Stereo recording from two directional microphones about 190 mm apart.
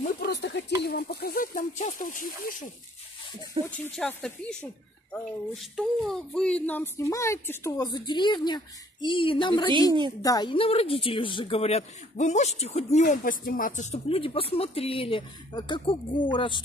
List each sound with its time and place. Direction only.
0.0 s a sound: 60° left (ahead or behind)
0.8 s speech: 55° left (ahead or behind)
3.7 s speech: 5° left (ahead or behind); by 13.0 s 35° left (ahead or behind)
13.0 s speech: 45° left (ahead or behind); by 16.6 s 25° left (ahead or behind)